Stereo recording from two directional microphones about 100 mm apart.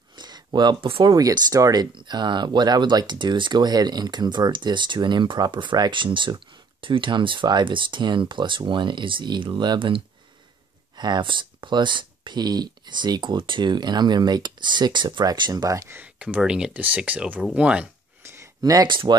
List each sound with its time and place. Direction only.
0.1 s a sound: 45° right (ahead or behind)
0.7 s speech: 60° right (ahead or behind)
1.1 s speech: 40° right (ahead or behind)
15.9 s speech: 15° right (ahead or behind)
18.6 s speech: 40° right (ahead or behind)
18.9 s speech: 55° right (ahead or behind)